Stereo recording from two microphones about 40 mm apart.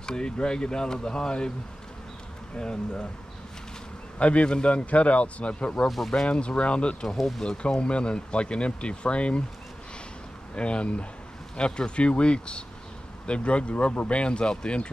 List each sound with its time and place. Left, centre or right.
0.0 s speech: left
2.5 s speech: left
4.2 s speech: left
4.8 s speech: left
5.9 s speech: centre
6.2 s speech: left
7.2 s speech: centre
7.4 s speech: left
10.5 s speech: left